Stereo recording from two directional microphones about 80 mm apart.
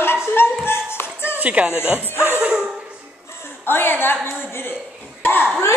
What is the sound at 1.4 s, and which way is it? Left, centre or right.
Speech, centre.